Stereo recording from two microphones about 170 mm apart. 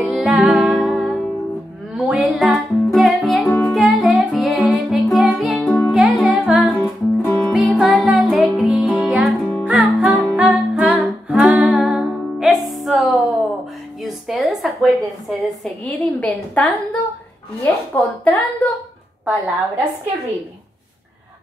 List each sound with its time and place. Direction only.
0.0 s music: 5° right (ahead or behind)
3.4 s music: 15° left (ahead or behind)
3.7 s music: centre (ahead or behind)
6.8 s music: 15° left (ahead or behind)
7.3 s music: centre (ahead or behind)
14.0 s a sound: centre (ahead or behind)